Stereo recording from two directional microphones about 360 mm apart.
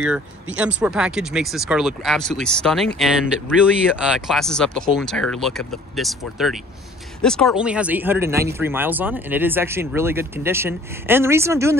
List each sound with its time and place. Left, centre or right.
0.0 s speech: centre